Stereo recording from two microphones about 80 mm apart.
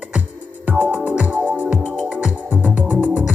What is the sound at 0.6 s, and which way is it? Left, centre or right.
Music, centre.